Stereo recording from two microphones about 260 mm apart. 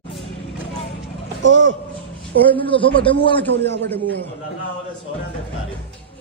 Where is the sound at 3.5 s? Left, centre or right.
Right.